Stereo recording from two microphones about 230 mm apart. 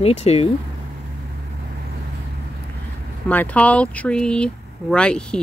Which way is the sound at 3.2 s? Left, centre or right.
Centre.